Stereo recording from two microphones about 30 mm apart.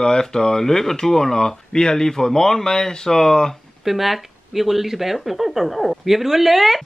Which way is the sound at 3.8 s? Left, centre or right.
Centre.